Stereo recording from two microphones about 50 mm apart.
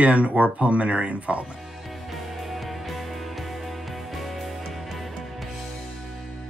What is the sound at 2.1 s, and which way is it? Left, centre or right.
Music, centre.